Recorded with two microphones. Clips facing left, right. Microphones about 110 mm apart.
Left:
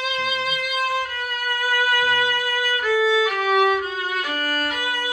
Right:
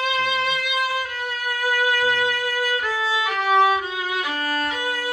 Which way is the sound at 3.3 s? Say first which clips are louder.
Right 1 dB; 30° right (ahead or behind).